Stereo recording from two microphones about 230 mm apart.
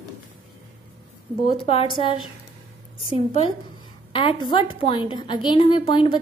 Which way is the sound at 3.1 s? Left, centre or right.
Left.